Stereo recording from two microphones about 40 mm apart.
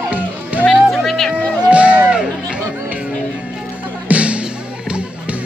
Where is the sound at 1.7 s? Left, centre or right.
Right.